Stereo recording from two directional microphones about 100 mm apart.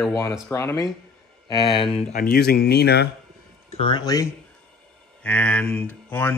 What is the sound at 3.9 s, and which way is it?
Speech, 35° left (ahead or behind).